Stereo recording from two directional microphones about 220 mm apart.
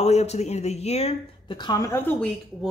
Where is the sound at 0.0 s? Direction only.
30° left (ahead or behind); by 2.2 s 10° left (ahead or behind).